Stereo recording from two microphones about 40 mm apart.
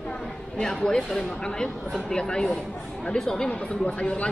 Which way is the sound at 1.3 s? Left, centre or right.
Centre.